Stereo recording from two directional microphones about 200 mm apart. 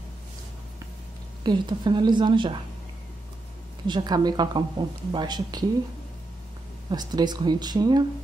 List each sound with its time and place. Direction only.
1.4 s a woman's voice: 20° right (ahead or behind)
3.8 s a woman's voice: 20° right (ahead or behind)
6.9 s a woman's voice: 20° right (ahead or behind)